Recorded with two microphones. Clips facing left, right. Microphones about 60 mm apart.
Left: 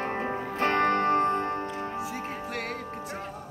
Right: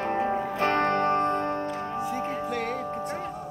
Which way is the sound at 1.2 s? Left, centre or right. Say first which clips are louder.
Even; left.